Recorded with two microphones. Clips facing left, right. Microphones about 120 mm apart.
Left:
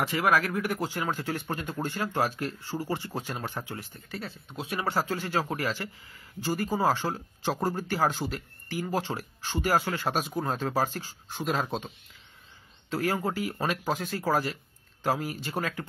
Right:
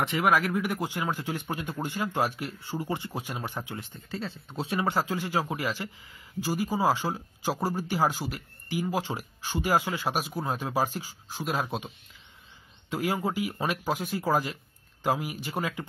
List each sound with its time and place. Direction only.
0.0 s a man's voice: 20° right (ahead or behind)
12.9 s a man's voice: 15° right (ahead or behind)